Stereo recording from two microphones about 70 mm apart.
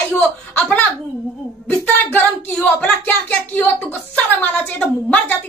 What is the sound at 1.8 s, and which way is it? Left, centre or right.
Speech, left.